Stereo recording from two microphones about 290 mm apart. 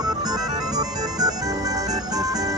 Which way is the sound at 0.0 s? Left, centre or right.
Centre.